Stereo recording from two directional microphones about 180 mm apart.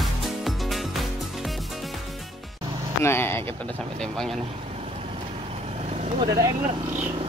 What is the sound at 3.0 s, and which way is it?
Speech, 15° left (ahead or behind).